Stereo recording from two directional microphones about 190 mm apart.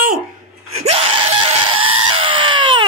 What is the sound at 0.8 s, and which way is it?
Screaming, 30° right (ahead or behind).